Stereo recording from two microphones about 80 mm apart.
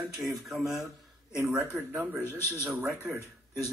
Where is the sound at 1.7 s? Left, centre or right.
Right.